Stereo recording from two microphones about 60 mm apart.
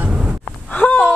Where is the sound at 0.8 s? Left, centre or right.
Left.